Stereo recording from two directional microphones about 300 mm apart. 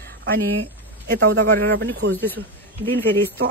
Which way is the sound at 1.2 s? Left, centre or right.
Right.